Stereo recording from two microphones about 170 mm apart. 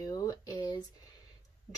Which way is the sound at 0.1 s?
20° left (ahead or behind).